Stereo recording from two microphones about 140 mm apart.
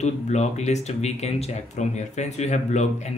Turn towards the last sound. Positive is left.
turn(degrees=55)  # may be behind; listen again after turning